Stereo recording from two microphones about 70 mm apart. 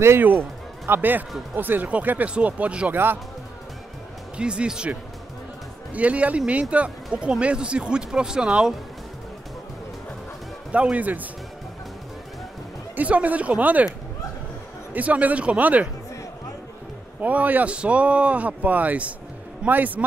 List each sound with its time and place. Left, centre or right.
0.2 s speech: right
2.9 s speech: right
4.4 s speech: centre
5.9 s speech: centre
10.7 s speech: centre
12.9 s speech: right
15.0 s speech: right
17.2 s speech: right